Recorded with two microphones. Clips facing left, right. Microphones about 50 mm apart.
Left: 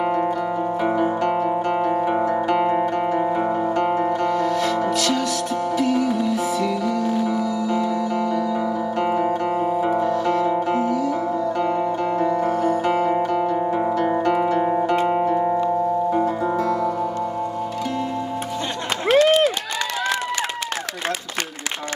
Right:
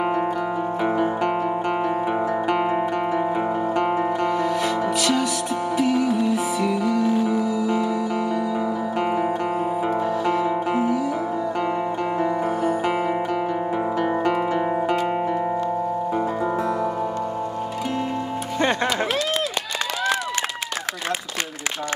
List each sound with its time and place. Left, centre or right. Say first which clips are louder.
0.0 s music: left 1 dB; centre
12.2 s music: left 2 dB; centre
13.1 s zither: left 3 dB; centre
14.3 s guitar: left 3 dB; centre
15.0 s music: left 4 dB; centre
16.5 s music: left 2 dB; right
19.1 s run: left 9 dB; left